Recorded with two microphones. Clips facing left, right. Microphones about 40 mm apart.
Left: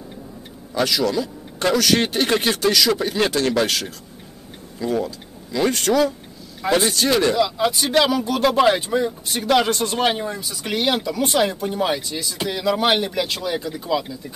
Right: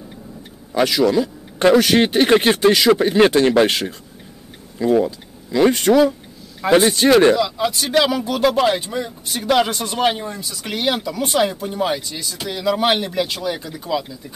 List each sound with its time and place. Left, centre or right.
0.7 s speech: centre
7.3 s speech: centre